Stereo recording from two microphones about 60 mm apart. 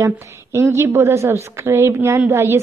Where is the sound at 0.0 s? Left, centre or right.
Right.